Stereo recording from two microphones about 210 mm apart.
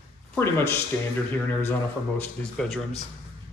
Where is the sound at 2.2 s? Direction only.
5° left (ahead or behind).